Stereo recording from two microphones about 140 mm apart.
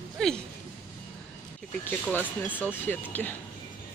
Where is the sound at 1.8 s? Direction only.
10° left (ahead or behind).